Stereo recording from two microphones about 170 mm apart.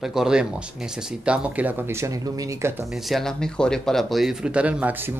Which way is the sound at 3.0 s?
Centre (ahead or behind).